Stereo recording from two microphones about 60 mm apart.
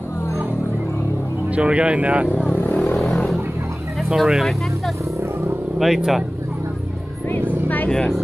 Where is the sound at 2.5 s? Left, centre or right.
Left.